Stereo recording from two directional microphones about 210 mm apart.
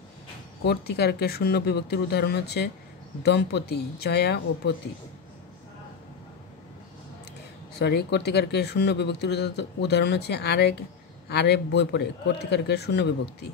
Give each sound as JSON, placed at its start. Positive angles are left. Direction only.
{"t": 0.7, "sound": "speech", "side_deg": 50}
{"t": 7.8, "sound": "speech", "side_deg": 50}